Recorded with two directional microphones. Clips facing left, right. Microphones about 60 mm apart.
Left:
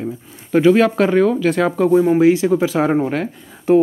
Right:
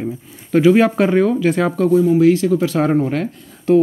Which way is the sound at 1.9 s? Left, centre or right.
Left.